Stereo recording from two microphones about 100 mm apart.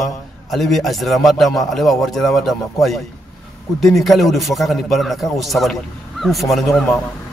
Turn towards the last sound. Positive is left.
turn(degrees=0)  # may be behind; listen again after turning